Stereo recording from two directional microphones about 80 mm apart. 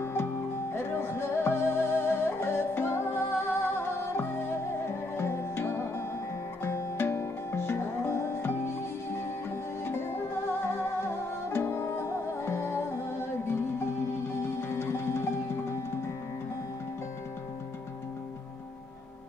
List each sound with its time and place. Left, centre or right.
0.0 s music: left
9.8 s music: left
11.5 s music: left
14.6 s music: left